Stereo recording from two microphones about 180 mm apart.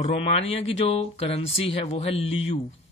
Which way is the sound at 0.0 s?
35° left (ahead or behind).